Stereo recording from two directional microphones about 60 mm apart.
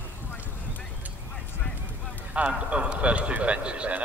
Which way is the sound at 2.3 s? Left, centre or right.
Right.